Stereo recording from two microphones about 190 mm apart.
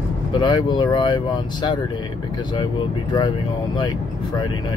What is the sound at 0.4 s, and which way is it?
Speech, 25° left (ahead or behind).